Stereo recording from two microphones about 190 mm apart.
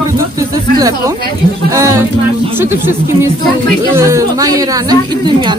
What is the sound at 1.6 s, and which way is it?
Speech, 15° right (ahead or behind).